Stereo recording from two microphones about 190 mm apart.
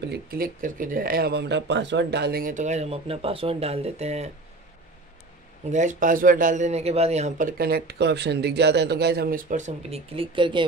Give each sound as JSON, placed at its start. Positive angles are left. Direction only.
{"t": 0.1, "sound": "speech", "side_deg": -50}
{"t": 5.7, "sound": "speech", "side_deg": -40}